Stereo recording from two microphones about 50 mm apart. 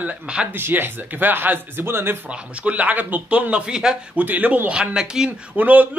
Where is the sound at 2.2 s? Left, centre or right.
Right.